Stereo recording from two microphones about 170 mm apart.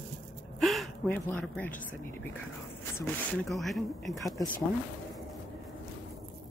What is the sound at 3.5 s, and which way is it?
Speech, centre (ahead or behind).